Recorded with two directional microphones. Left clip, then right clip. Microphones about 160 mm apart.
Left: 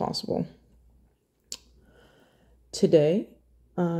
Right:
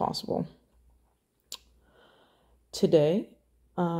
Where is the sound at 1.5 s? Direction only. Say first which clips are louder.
Left 2 dB; 25° left (ahead or behind).